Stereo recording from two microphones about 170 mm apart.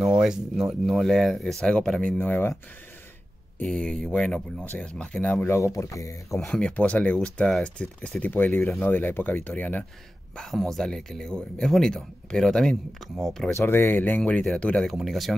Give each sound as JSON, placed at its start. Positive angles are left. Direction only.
{"t": 0.2, "sound": "speech", "side_deg": -5}
{"t": 3.5, "sound": "speech", "side_deg": 5}
{"t": 6.3, "sound": "speech", "side_deg": 5}
{"t": 13.6, "sound": "speech", "side_deg": 15}